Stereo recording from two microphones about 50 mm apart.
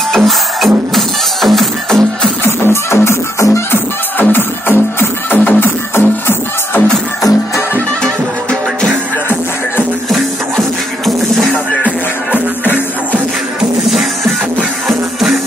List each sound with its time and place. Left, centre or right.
0.1 s music: centre
2.4 s music: left
4.2 s music: left
5.9 s music: left
10.0 s music: centre
12.6 s music: left
13.8 s music: centre